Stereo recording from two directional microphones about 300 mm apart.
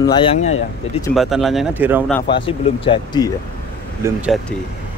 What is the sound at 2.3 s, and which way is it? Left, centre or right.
Speech, centre.